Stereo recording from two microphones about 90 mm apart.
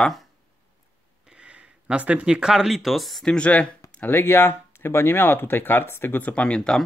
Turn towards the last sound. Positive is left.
turn(degrees=5)  # may be behind; listen again after turning